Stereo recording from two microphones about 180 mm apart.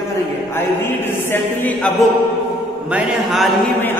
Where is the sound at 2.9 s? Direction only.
5° right (ahead or behind).